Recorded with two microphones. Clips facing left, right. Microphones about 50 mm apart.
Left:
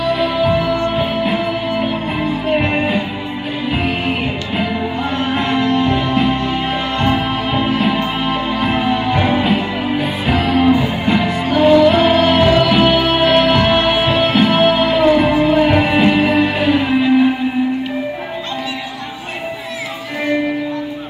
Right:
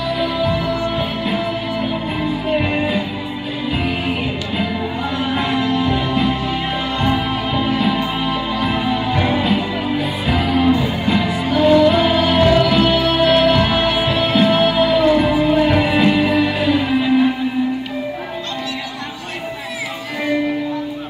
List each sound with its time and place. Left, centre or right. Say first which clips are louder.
0.2 s music: left 4 dB; centre
5.2 s music: left 2 dB; centre